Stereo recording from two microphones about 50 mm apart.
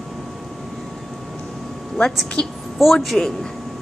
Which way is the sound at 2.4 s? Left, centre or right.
Left.